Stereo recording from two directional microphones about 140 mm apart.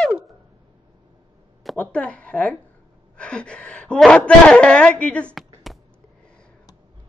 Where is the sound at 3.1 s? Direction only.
5° left (ahead or behind).